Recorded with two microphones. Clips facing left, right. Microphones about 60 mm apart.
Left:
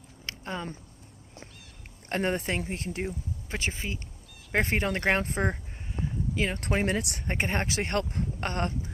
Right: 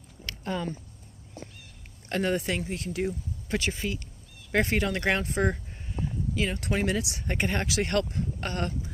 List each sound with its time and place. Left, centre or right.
0.3 s a sound: centre
2.0 s speech: left
6.3 s speech: left
7.0 s speech: left
7.2 s speech: left
8.1 s speech: left